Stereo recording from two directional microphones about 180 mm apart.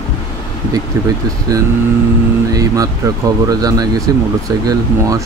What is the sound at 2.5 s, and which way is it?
Speech, 20° right (ahead or behind).